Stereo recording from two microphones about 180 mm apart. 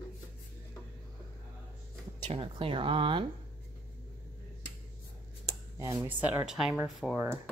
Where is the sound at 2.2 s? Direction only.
30° right (ahead or behind).